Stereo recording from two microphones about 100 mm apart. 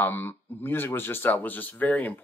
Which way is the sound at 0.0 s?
20° left (ahead or behind).